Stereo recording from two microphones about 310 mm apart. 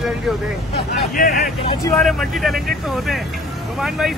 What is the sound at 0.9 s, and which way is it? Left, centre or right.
Speech, left.